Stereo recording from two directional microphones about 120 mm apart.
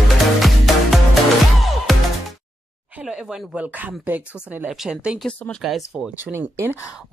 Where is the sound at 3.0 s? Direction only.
5° right (ahead or behind).